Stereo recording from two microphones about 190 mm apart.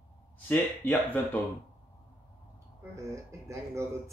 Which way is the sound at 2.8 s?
15° right (ahead or behind).